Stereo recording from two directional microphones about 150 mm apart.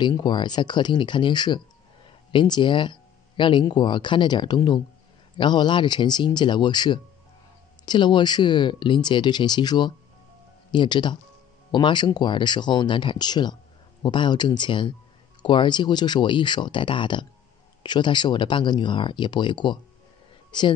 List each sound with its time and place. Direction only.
0.0 s speech: 30° left (ahead or behind)